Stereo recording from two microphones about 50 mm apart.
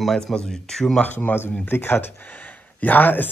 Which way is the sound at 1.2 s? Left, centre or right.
Left.